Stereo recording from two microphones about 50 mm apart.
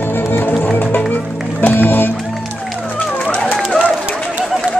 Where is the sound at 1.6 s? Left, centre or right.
Left.